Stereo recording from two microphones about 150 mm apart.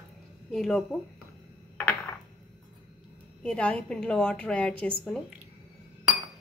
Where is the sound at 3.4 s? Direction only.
5° left (ahead or behind).